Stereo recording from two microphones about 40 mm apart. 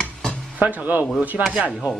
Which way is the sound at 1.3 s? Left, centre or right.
Right.